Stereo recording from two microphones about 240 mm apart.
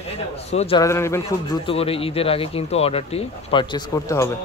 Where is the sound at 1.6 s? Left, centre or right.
Left.